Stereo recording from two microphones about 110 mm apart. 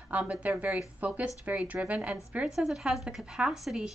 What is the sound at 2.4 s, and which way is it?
A woman's voice, centre (ahead or behind).